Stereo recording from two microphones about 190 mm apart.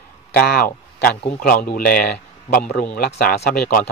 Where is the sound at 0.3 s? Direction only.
55° left (ahead or behind).